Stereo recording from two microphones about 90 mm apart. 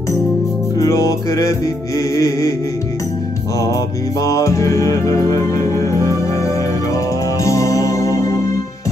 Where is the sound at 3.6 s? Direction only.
40° left (ahead or behind).